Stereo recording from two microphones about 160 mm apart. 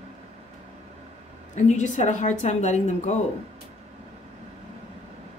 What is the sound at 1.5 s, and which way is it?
A woman's voice, 45° left (ahead or behind).